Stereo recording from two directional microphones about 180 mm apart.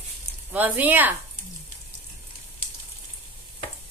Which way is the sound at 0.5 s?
10° right (ahead or behind).